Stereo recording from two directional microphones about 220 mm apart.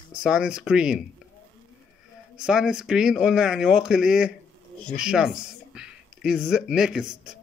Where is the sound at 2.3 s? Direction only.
5° right (ahead or behind).